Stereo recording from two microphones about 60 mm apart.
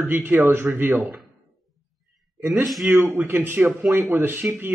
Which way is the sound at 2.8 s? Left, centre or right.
Right.